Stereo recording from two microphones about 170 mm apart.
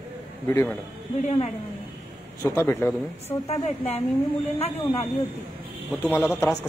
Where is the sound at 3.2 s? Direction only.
40° left (ahead or behind).